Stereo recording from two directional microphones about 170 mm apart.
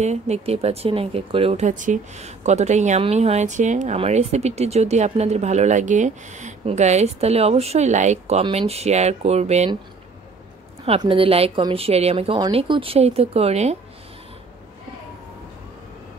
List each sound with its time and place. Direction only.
0.0 s speech: 40° right (ahead or behind)
1.7 s speech: 50° right (ahead or behind)
11.0 s speech: 30° right (ahead or behind)